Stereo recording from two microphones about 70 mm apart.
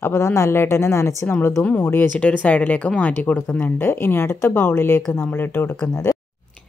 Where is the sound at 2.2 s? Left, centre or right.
Centre.